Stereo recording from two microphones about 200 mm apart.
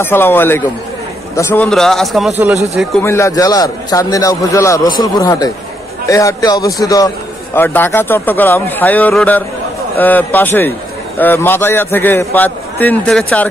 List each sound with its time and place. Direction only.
0.0 s a man's voice: 10° left (ahead or behind)
3.0 s a man's voice: 15° left (ahead or behind)